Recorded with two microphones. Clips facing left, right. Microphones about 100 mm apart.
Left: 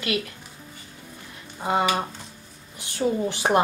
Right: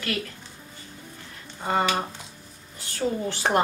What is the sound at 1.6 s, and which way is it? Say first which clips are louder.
A woman's voice: left 1 dB; 15° left (ahead or behind).